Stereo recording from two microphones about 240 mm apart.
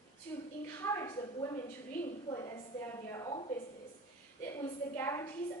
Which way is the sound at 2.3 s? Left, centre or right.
Centre.